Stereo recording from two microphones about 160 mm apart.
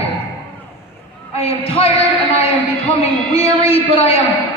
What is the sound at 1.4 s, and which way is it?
A man's voice, 35° left (ahead or behind).